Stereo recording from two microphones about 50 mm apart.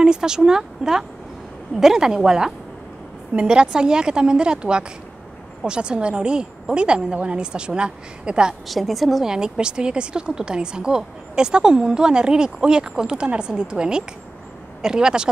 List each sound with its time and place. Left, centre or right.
0.0 s a woman's voice: centre
8.6 s a woman's voice: centre
9.3 s speech: centre